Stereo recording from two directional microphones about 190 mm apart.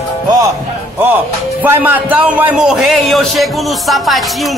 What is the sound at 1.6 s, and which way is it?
A man's voice, 10° right (ahead or behind).